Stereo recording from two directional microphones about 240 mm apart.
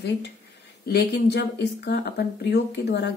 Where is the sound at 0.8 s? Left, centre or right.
Left.